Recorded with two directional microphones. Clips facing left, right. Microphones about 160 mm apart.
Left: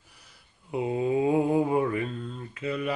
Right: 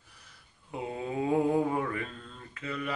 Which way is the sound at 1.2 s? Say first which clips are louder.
Even; 15° left (ahead or behind).